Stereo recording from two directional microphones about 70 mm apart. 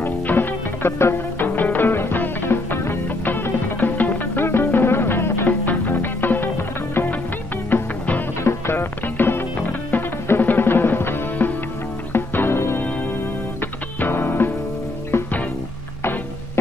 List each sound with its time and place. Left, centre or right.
0.0 s music: left
7.7 s music: left
13.9 s music: left